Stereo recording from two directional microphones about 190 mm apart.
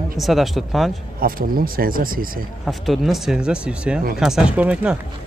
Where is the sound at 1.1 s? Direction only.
50° right (ahead or behind).